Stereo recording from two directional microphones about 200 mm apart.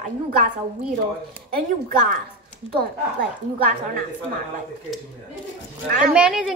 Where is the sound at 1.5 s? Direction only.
50° right (ahead or behind).